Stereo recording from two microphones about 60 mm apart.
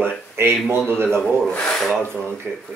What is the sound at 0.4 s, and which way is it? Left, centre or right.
Speech, right.